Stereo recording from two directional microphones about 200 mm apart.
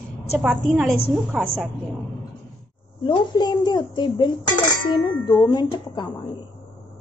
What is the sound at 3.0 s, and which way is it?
A child's voice, 20° left (ahead or behind).